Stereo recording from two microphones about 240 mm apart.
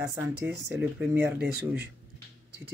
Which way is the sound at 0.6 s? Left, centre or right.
Centre.